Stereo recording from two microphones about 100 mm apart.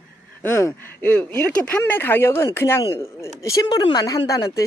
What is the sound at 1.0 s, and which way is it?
Speech, 15° left (ahead or behind).